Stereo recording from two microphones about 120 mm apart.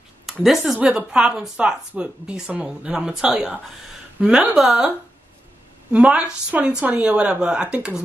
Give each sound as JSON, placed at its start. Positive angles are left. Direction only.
{"t": 0.3, "sound": "a woman's voice", "side_deg": 0}